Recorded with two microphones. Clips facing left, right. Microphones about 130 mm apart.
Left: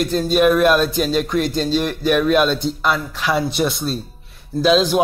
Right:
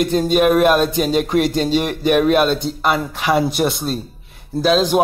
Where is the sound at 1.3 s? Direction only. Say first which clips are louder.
Right 2 dB; 65° right (ahead or behind).